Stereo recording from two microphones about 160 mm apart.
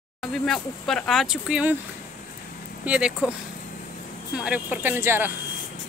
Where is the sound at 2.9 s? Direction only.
5° right (ahead or behind).